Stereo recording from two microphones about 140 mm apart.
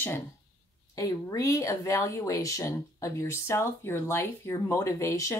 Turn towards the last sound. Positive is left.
turn(degrees=20)  # may be behind; listen again after turning